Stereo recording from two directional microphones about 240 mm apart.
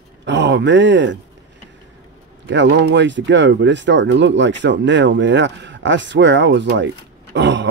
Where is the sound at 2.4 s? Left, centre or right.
Right.